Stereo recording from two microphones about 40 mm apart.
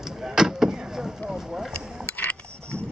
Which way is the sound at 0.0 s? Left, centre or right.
Centre.